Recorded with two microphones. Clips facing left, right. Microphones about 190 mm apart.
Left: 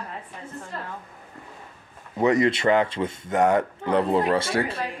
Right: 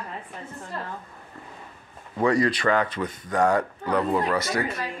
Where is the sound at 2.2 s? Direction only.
20° left (ahead or behind).